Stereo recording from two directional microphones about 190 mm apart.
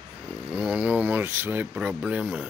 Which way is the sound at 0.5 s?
5° right (ahead or behind).